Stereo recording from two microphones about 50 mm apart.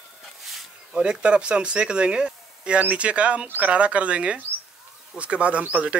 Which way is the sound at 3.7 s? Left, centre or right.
Right.